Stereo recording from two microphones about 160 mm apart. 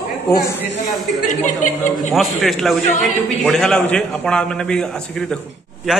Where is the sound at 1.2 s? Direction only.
50° left (ahead or behind).